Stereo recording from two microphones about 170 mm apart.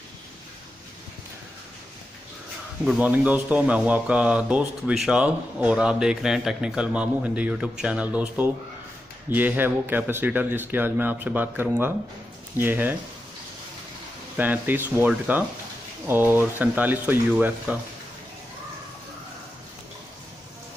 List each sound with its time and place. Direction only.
2.8 s speech: 5° right (ahead or behind)
14.3 s speech: 10° right (ahead or behind)